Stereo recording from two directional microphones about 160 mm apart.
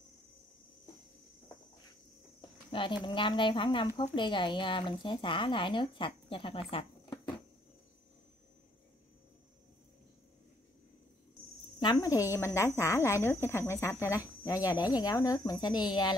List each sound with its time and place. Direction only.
2.7 s a woman's voice: 30° left (ahead or behind)
11.8 s speech: 25° left (ahead or behind)